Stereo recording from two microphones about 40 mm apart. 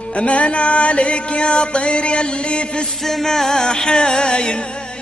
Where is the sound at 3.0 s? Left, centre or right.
Centre.